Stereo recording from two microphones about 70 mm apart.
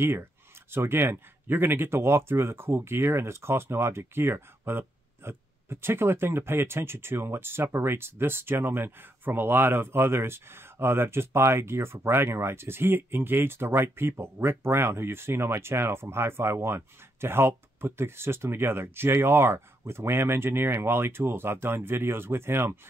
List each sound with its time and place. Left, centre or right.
0.0 s speech: right